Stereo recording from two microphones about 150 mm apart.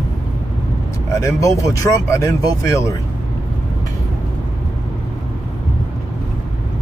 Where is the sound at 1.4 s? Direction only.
20° left (ahead or behind).